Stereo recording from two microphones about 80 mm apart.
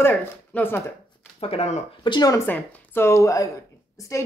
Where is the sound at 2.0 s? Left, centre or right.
Left.